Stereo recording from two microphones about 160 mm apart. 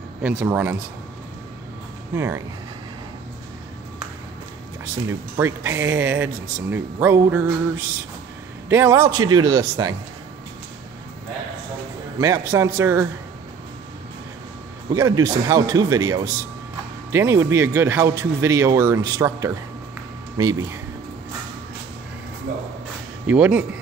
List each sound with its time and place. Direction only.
0.4 s speech: 15° right (ahead or behind)
2.1 s speech: 15° right (ahead or behind)
5.4 s a man's voice: 15° right (ahead or behind)
12.2 s speech: 20° right (ahead or behind)
14.9 s a man's voice: 20° right (ahead or behind)
23.2 s speech: 10° right (ahead or behind)